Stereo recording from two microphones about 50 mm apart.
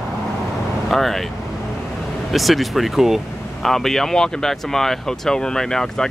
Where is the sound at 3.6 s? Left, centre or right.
Centre.